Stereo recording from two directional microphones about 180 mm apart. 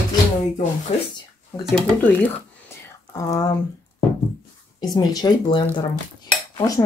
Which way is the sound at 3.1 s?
20° left (ahead or behind).